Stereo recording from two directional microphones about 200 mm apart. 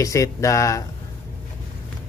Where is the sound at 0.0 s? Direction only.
15° left (ahead or behind).